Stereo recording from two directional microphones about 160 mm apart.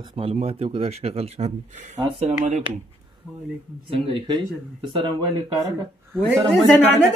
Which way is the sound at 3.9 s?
30° right (ahead or behind).